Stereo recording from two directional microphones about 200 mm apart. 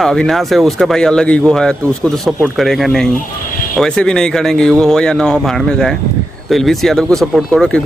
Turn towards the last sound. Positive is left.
turn(degrees=0)  # may be behind; listen again after turning